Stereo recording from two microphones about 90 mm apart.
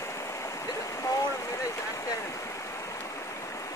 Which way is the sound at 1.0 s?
40° left (ahead or behind).